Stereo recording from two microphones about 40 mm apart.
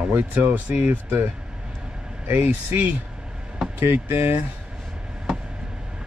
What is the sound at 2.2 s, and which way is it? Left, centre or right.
Speech, right.